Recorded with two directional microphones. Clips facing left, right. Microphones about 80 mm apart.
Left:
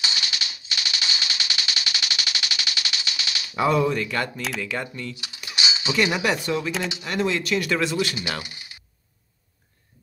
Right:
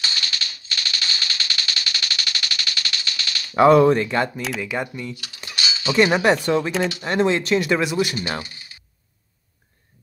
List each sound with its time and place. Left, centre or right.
0.0 s typewriter: centre
3.5 s speech: right
3.9 s speech: right
4.6 s speech: centre
5.1 s dishes: centre
5.5 s cutlery: centre
5.9 s speech: right; by 8.2 s centre
8.2 s speech: right
8.5 s coin: centre